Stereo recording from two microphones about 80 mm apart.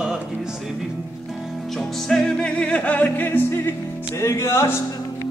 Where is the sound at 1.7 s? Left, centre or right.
Centre; by 3.7 s left.